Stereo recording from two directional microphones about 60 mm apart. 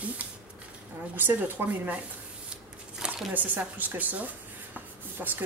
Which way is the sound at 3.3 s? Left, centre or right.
Right.